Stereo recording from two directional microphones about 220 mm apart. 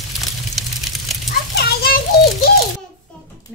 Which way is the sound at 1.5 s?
45° left (ahead or behind).